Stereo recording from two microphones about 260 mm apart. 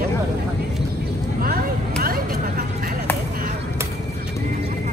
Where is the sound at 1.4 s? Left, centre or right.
Right.